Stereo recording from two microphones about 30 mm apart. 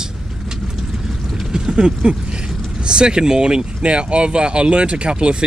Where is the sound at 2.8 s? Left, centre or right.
Right.